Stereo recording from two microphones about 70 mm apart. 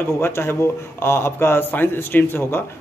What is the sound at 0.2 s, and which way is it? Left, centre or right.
A man's voice, left.